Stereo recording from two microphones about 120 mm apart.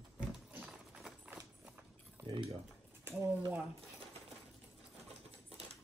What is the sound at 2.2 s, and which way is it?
Speech, 45° right (ahead or behind).